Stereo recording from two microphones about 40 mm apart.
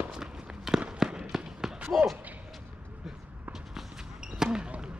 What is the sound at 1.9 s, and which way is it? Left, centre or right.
Slam, centre.